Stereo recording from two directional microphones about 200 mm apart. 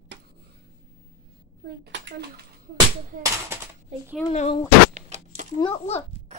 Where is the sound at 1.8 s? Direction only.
60° right (ahead or behind).